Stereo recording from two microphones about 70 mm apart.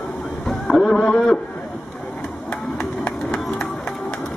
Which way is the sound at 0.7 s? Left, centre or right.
Centre.